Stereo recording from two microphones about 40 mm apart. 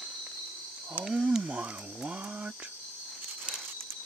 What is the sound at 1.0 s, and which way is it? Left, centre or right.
Speech, right.